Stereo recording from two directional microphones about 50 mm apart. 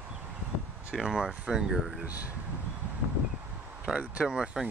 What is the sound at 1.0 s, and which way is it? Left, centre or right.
Speech, centre.